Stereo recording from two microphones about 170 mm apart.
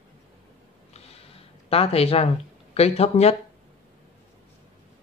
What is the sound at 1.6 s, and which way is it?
Speech, 35° left (ahead or behind).